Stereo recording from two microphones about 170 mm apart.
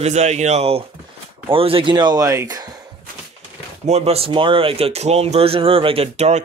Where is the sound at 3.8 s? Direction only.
40° right (ahead or behind).